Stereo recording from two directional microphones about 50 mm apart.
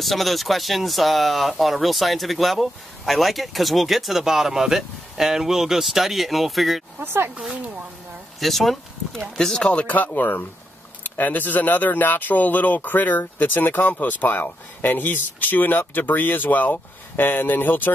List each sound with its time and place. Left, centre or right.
0.0 s speech: centre
7.0 s speech: right
7.5 s speech: right
8.4 s speech: centre
9.6 s speech: left
10.0 s speech: left